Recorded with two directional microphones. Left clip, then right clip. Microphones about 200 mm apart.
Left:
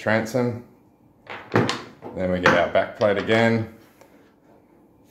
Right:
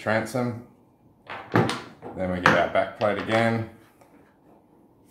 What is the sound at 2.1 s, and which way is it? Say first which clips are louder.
Speech: left 2 dB; 30° left (ahead or behind).